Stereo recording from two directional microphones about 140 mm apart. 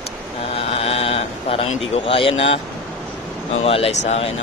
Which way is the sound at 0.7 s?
45° left (ahead or behind).